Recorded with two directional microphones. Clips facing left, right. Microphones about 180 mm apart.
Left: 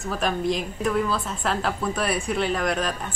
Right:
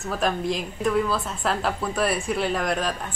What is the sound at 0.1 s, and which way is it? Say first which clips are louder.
A woman's voice: even; centre (ahead or behind).